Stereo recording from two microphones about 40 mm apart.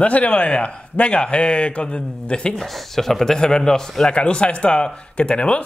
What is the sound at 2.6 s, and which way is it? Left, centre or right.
A man's voice, centre.